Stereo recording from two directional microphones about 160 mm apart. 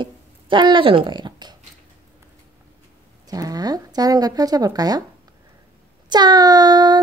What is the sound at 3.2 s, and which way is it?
Speech, 25° right (ahead or behind).